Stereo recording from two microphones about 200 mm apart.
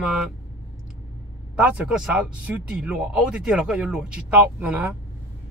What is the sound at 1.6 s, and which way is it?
Speech, 5° right (ahead or behind).